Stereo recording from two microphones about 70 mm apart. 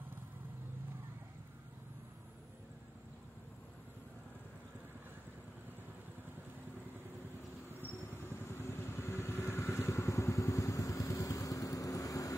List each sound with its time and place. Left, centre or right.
8.4 s vehicle: left